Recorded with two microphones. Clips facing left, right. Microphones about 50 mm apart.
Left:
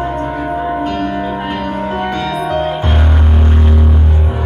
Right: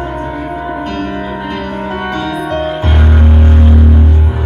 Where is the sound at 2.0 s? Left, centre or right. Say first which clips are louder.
Even; right.